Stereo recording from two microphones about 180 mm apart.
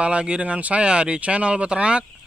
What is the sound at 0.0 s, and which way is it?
Speech, 5° right (ahead or behind).